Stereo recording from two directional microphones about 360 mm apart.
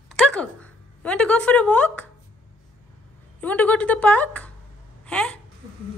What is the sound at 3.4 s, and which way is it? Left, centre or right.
A woman's voice, centre.